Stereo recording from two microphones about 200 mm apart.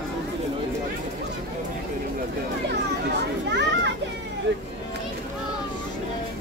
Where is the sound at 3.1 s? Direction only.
60° right (ahead or behind).